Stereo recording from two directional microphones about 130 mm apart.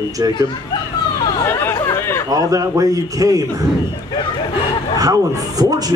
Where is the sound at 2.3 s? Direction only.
25° right (ahead or behind).